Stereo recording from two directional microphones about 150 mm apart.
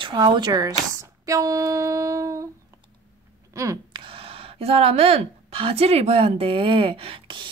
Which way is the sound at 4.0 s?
35° right (ahead or behind).